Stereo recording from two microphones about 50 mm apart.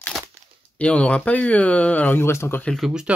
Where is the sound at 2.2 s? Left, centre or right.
Left.